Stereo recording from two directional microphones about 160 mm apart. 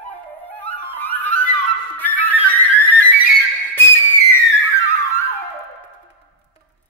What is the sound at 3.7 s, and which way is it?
Whistle, 15° left (ahead or behind).